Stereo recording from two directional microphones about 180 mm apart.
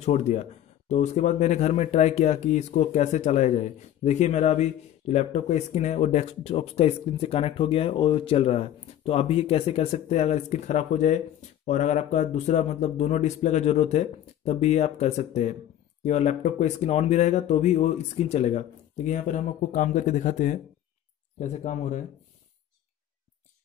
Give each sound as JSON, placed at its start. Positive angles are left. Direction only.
{"t": 0.0, "sound": "speech", "side_deg": 40}